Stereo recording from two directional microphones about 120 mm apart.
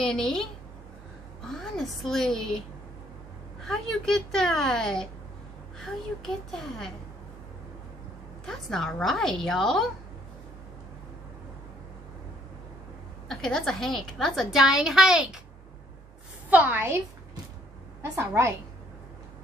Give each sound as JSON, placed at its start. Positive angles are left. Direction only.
{"t": 0.0, "sound": "a woman's voice", "side_deg": 5}
{"t": 1.5, "sound": "a woman's voice", "side_deg": 5}
{"t": 3.6, "sound": "a woman's voice", "side_deg": 5}
{"t": 8.5, "sound": "a woman's voice", "side_deg": 5}
{"t": 13.3, "sound": "a woman's voice", "side_deg": 5}
{"t": 16.4, "sound": "a woman's voice", "side_deg": -15}
{"t": 18.1, "sound": "a woman's voice", "side_deg": -25}